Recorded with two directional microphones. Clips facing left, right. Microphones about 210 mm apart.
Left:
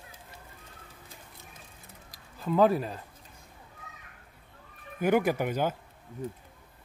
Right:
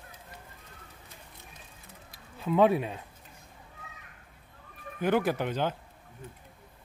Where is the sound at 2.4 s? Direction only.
Centre (ahead or behind).